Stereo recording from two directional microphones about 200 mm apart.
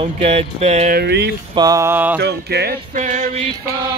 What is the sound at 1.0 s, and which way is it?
Speech, 55° right (ahead or behind).